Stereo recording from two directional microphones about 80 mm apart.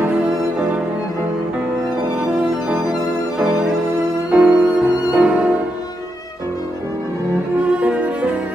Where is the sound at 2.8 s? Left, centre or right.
Centre.